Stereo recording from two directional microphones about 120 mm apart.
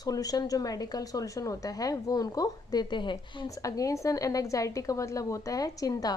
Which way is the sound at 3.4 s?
30° left (ahead or behind).